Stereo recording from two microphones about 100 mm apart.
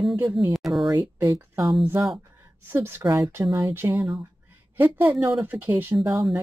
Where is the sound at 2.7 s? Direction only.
25° right (ahead or behind).